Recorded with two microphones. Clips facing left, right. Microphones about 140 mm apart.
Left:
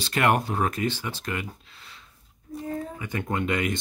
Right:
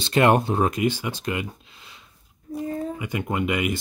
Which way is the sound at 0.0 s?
25° right (ahead or behind).